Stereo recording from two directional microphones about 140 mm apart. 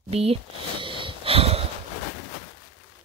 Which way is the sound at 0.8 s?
40° right (ahead or behind).